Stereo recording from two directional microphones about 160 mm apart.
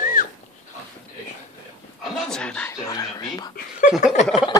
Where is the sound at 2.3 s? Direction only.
5° left (ahead or behind).